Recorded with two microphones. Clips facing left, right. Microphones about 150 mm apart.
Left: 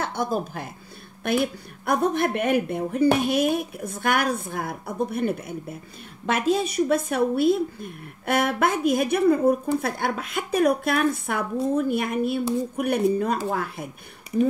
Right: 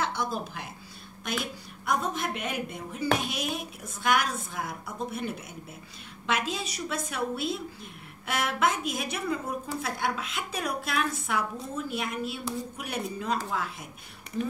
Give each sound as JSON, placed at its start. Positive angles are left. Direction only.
{"t": 0.0, "sound": "a woman's voice", "side_deg": 50}